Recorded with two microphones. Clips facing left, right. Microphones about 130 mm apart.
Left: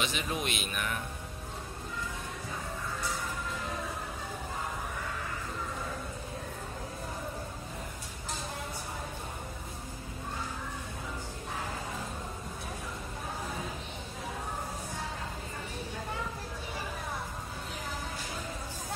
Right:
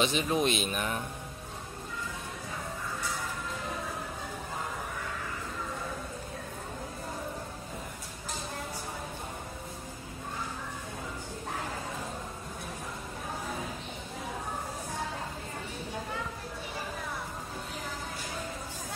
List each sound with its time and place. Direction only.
0.0 s speech: 30° right (ahead or behind)